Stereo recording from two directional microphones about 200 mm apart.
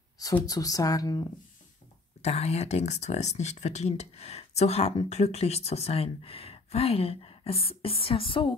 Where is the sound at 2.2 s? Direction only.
30° left (ahead or behind).